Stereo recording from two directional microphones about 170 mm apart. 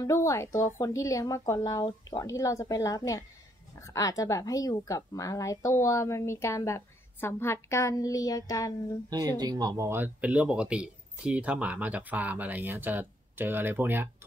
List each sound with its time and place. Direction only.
0.0 s a woman's voice: 20° left (ahead or behind)
9.4 s speech: 25° right (ahead or behind)